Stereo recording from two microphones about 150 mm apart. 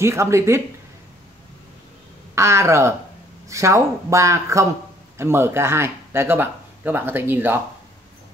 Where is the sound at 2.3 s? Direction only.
20° right (ahead or behind).